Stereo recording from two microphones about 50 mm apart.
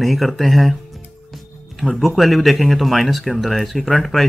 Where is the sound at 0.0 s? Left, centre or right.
Centre.